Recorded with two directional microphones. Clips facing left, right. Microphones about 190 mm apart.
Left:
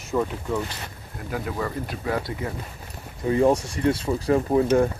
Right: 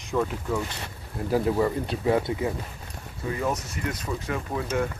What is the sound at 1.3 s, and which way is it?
Speech, 30° right (ahead or behind).